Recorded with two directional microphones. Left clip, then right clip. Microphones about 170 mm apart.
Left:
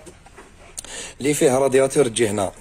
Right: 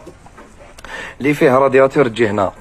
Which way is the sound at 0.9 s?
15° left (ahead or behind).